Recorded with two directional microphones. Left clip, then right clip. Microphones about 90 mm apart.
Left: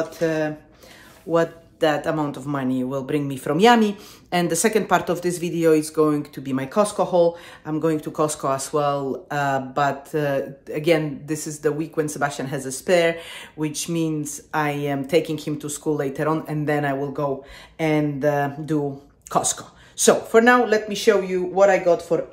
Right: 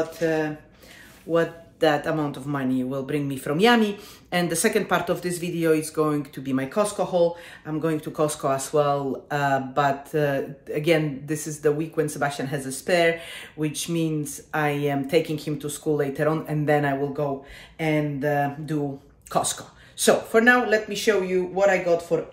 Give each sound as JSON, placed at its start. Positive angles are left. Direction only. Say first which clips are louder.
{"t": 0.2, "sound": "speech", "louder": "left 2 dB", "side_deg": 50}
{"t": 1.3, "sound": "speech", "louder": "left 2 dB", "side_deg": 35}
{"t": 5.2, "sound": "speech", "louder": "left 5 dB", "side_deg": 50}
{"t": 5.8, "sound": "speech", "louder": "left 4 dB", "side_deg": 25}
{"t": 6.7, "sound": "speech", "louder": "left 5 dB", "side_deg": 65}
{"t": 7.6, "sound": "speech", "louder": "left 4 dB", "side_deg": 35}
{"t": 17.7, "sound": "speech", "louder": "left 3 dB", "side_deg": 50}
{"t": 20.0, "sound": "speech", "louder": "left 3 dB", "side_deg": 45}